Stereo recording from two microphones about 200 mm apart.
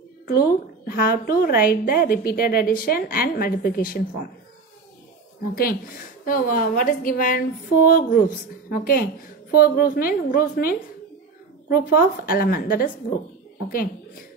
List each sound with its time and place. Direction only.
0.3 s a woman's voice: 45° left (ahead or behind)
5.5 s a woman's voice: 45° left (ahead or behind)